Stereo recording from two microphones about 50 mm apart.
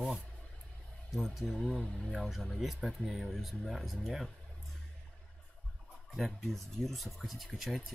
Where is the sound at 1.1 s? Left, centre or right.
Centre.